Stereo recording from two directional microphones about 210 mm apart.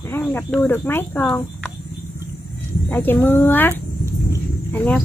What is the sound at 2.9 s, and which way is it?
Speech, 10° left (ahead or behind).